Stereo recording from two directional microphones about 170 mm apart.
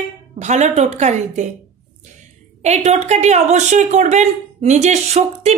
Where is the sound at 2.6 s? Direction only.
40° right (ahead or behind).